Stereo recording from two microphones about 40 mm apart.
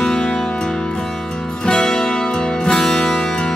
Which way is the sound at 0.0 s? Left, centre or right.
Centre.